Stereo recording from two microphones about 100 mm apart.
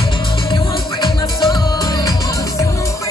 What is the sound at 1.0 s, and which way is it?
Music, 45° left (ahead or behind).